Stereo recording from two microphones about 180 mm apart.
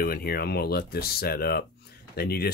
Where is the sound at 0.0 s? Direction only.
55° left (ahead or behind).